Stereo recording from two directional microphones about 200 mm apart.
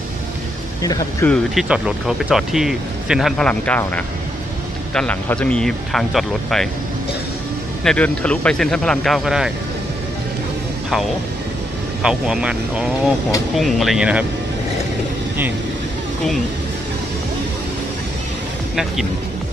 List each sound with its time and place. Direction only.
0.8 s speech: 15° left (ahead or behind)
1.3 s speech: centre (ahead or behind)
7.8 s speech: 5° left (ahead or behind)
12.0 s speech: 5° right (ahead or behind)